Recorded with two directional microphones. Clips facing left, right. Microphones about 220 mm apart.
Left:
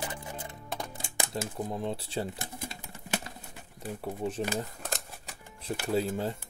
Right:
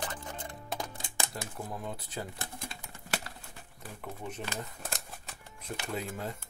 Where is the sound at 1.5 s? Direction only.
25° left (ahead or behind).